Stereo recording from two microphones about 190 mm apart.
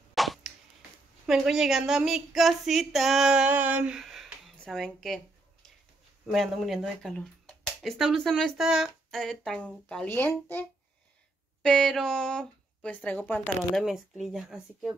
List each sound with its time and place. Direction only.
0.1 s plop: centre (ahead or behind)
1.2 s speech: 5° right (ahead or behind)
6.3 s speech: centre (ahead or behind)